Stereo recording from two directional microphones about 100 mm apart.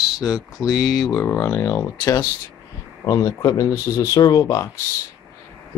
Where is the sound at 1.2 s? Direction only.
25° left (ahead or behind).